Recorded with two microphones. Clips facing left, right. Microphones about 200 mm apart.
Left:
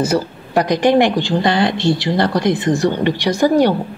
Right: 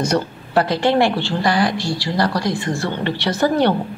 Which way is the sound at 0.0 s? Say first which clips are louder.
Left 2 dB; 10° left (ahead or behind).